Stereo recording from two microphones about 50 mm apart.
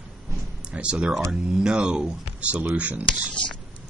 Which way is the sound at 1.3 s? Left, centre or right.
Centre.